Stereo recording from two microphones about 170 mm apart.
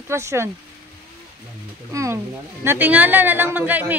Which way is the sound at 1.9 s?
20° right (ahead or behind).